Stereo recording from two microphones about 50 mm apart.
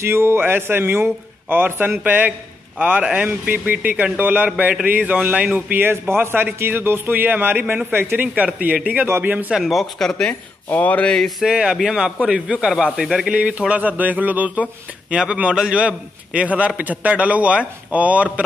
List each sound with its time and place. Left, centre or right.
0.0 s a man's voice: right
2.8 s a man's voice: right
3.3 s speech: right
5.8 s a man's voice: right
8.0 s a man's voice: right
8.7 s a man's voice: right
9.6 s speech: centre
10.7 s a sound: left
11.4 s a man's voice: centre